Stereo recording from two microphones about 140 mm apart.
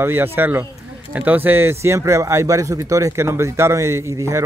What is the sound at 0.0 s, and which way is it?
Speech, 15° right (ahead or behind).